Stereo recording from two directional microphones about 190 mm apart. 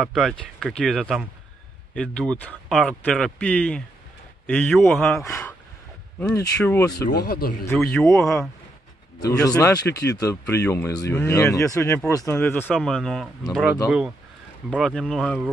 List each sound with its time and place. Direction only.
0.0 s speech: centre (ahead or behind)
5.2 s speech: 15° left (ahead or behind)
7.1 s speech: 55° left (ahead or behind)
7.7 s speech: centre (ahead or behind)
9.2 s speech: 20° left (ahead or behind); by 15.5 s centre (ahead or behind)